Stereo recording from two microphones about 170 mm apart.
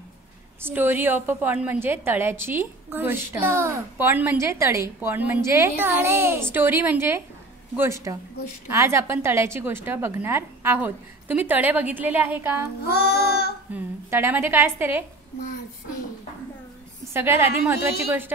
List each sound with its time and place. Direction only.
0.6 s a woman's voice: 15° right (ahead or behind)
12.8 s child singing: 70° left (ahead or behind)
13.7 s a woman's voice: 10° right (ahead or behind)
17.1 s a woman's voice: 15° right (ahead or behind)